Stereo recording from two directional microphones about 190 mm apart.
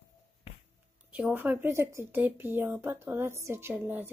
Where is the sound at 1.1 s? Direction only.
10° right (ahead or behind).